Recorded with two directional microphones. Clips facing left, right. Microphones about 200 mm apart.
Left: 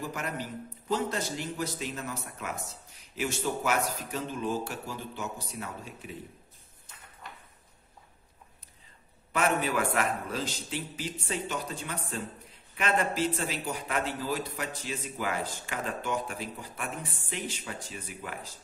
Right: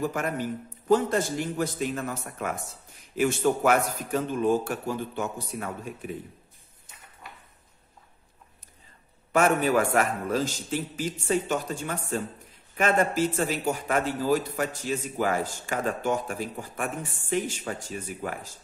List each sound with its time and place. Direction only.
0.0 s a man's voice: 50° right (ahead or behind)
9.3 s a man's voice: 45° right (ahead or behind)